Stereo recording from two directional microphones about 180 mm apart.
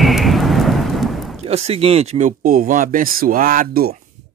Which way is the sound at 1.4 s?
35° right (ahead or behind).